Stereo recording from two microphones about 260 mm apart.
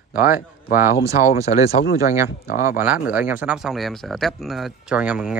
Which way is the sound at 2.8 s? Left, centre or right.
Centre.